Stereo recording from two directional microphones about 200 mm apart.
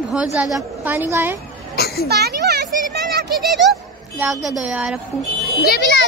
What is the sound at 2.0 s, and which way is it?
Speech, 55° right (ahead or behind).